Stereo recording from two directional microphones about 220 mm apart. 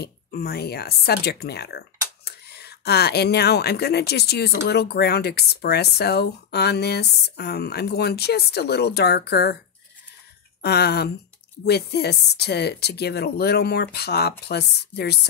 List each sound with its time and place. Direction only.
0.0 s speech: 45° left (ahead or behind)
10.6 s speech: 45° left (ahead or behind)